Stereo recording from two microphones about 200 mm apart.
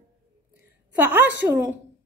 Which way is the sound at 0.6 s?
10° right (ahead or behind).